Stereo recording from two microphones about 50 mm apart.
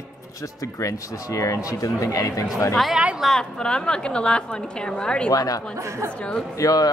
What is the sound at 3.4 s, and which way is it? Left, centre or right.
A woman's voice, centre.